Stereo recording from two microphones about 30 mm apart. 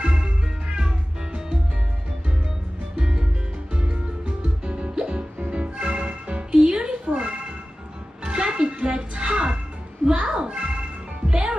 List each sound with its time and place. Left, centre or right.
0.0 s music: right
3.0 s music: right
6.5 s meow: right
8.2 s music: right